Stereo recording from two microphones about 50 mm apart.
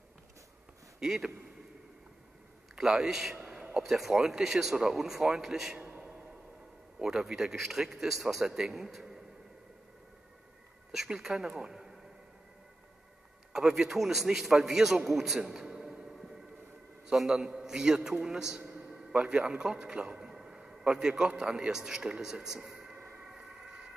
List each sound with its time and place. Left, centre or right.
0.9 s speech: centre
2.7 s a man's voice: centre
3.3 s a sound: centre
3.8 s a man's voice: centre
5.8 s a sound: right
7.0 s a man's voice: centre
11.1 s a man's voice: centre
13.5 s a man's voice: centre
17.1 s a man's voice: centre
23.2 s a sound: centre